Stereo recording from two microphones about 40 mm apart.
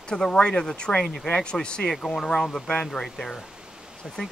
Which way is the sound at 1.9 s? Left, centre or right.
Centre.